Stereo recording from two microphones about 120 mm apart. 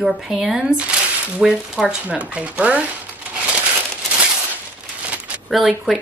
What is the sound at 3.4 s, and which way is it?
Crumpling, 10° right (ahead or behind).